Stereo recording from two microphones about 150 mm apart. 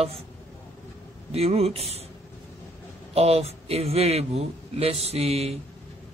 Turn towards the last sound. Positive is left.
turn(degrees=-45)  # may be behind; listen again after turning